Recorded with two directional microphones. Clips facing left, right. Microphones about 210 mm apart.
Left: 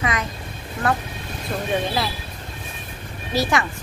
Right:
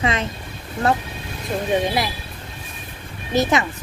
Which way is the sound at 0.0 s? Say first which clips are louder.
Right 3 dB; 25° right (ahead or behind).